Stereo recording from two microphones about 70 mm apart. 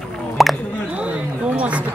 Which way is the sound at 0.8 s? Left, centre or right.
Centre.